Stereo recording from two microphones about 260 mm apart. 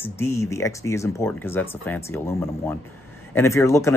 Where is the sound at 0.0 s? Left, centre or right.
Centre.